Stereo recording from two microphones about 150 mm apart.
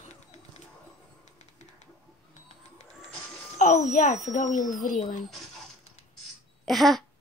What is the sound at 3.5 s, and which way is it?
Music, 50° left (ahead or behind).